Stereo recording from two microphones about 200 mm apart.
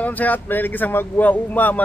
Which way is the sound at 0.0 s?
10° left (ahead or behind).